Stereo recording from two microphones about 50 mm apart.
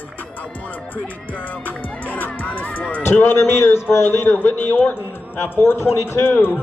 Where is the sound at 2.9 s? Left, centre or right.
Left.